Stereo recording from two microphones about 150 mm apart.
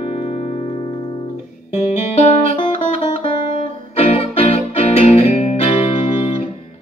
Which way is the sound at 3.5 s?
40° left (ahead or behind).